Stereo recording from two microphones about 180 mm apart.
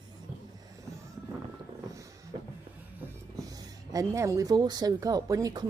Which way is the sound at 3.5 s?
20° right (ahead or behind).